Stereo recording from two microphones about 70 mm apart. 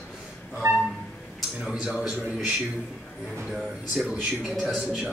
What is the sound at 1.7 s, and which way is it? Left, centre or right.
Speech, centre.